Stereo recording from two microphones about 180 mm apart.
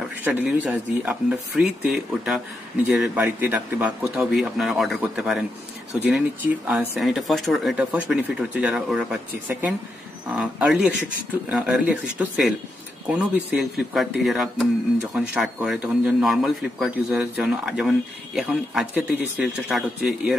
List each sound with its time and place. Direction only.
0.2 s a man's voice: 5° right (ahead or behind)
6.7 s a man's voice: 5° right (ahead or behind)